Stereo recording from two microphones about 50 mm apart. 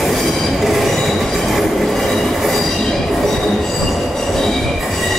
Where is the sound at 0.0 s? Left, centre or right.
Centre.